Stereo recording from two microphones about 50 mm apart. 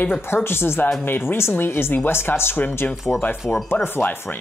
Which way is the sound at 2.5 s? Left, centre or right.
Left.